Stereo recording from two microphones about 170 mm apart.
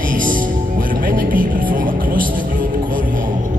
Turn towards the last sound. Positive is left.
turn(degrees=-55)  # may be behind; listen again after turning